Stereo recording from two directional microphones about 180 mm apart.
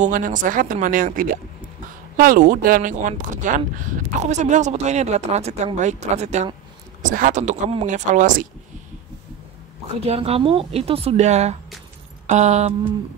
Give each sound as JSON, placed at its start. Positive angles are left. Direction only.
{"t": 0.0, "sound": "speech", "side_deg": -45}
{"t": 9.9, "sound": "speech", "side_deg": -35}